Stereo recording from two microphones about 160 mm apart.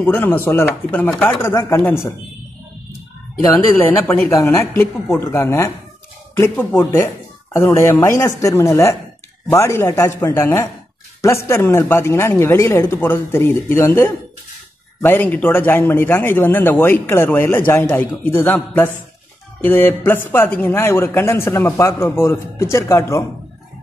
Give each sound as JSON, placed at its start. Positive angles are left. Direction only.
{"t": 0.0, "sound": "a man's voice", "side_deg": 10}
{"t": 3.5, "sound": "a man's voice", "side_deg": 15}